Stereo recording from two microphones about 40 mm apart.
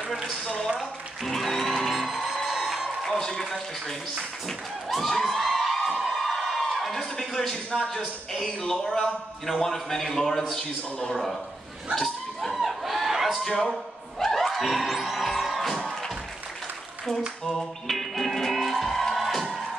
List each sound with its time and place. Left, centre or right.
0.7 s music: centre
3.1 s a man's voice: centre
4.5 s speech: centre
5.3 s a sound: centre
7.9 s a man's voice: centre
10.6 s a man's voice: left
11.9 s chuckle: centre
14.2 s music: centre
17.5 s music: centre